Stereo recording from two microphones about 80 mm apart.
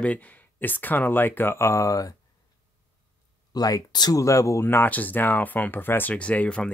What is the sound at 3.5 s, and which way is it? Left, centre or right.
Speech, left.